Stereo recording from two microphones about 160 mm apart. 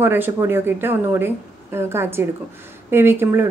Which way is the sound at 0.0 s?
15° right (ahead or behind).